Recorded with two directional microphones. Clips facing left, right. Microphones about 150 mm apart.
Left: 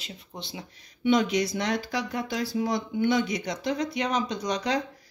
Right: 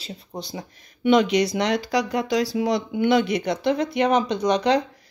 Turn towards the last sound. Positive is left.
turn(degrees=-65)  # may be behind; listen again after turning